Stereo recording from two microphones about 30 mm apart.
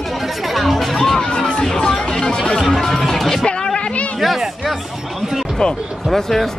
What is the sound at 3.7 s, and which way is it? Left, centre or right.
Chatter, left.